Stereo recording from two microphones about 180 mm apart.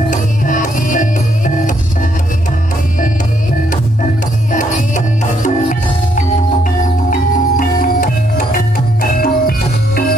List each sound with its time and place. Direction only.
0.1 s music: 45° left (ahead or behind)
4.5 s music: 45° left (ahead or behind)